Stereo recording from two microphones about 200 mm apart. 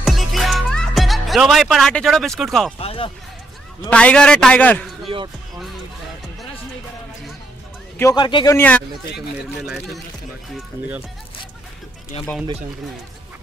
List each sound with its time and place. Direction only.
0.0 s music: centre (ahead or behind)
2.8 s music: 30° left (ahead or behind)
3.9 s a man's voice: 5° left (ahead or behind)
5.0 s speech: 25° right (ahead or behind)
8.0 s speech: 20° left (ahead or behind)
8.5 s speech: 5° left (ahead or behind)
9.7 s a man's voice: 5° right (ahead or behind)